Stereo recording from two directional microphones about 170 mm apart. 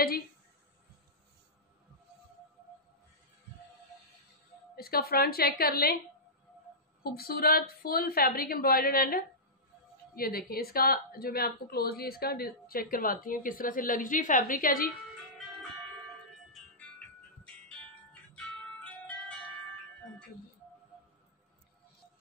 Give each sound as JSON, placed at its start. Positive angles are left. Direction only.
{"t": 4.7, "sound": "a woman's voice", "side_deg": 60}
{"t": 7.0, "sound": "a woman's voice", "side_deg": 60}
{"t": 18.3, "sound": "music", "side_deg": 5}